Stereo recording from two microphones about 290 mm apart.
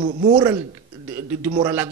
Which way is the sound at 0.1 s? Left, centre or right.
Right.